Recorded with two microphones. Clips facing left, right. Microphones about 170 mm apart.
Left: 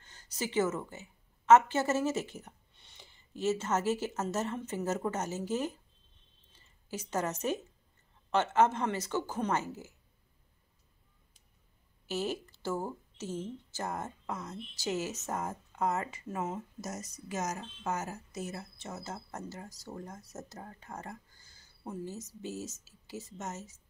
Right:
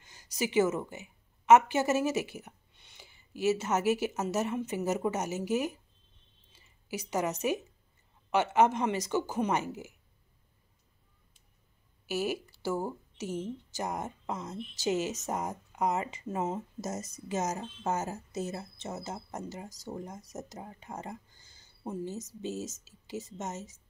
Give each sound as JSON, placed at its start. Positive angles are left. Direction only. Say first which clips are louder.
{"t": 0.0, "sound": "speech", "louder": "right 4 dB", "side_deg": -10}
{"t": 6.5, "sound": "a sound", "louder": "right 3 dB", "side_deg": -10}
{"t": 8.3, "sound": "speech", "louder": "right 2 dB", "side_deg": -10}
{"t": 12.1, "sound": "speech", "louder": "right 2 dB", "side_deg": -10}